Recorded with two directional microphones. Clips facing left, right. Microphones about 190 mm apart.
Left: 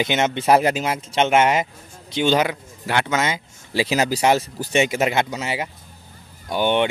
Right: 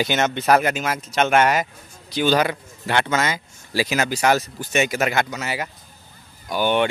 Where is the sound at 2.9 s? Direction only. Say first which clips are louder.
Even; 10° left (ahead or behind).